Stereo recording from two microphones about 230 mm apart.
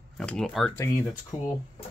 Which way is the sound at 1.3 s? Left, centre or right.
Left.